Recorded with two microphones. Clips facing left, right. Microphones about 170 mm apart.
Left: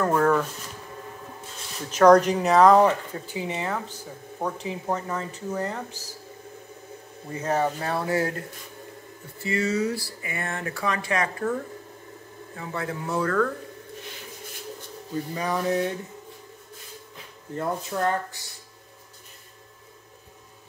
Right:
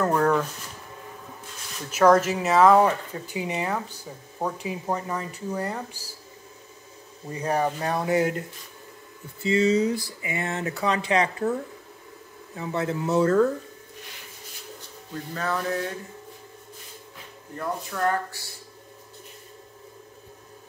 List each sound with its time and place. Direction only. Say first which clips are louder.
1.9 s speech: left 3 dB; 5° right (ahead or behind)
7.3 s speech: even; 15° right (ahead or behind)
9.4 s speech: right 4 dB; 20° right (ahead or behind)
12.5 s speech: right 4 dB; 25° right (ahead or behind)
15.3 s speech: left 2 dB; 15° left (ahead or behind)
17.6 s speech: left 2 dB; 25° left (ahead or behind)